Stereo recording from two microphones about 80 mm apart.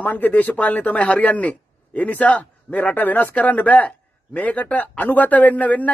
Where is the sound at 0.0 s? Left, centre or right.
Left.